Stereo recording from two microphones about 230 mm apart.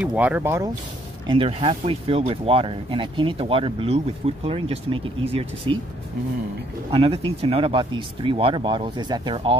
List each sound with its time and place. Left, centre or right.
0.0 s speech: centre
1.2 s speech: right
6.9 s speech: right